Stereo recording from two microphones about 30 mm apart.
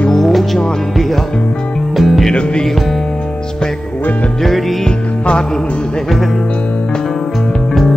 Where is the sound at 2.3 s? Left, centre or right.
Left.